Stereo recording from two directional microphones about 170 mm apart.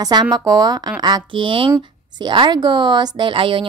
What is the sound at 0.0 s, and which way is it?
A woman's voice, 20° right (ahead or behind).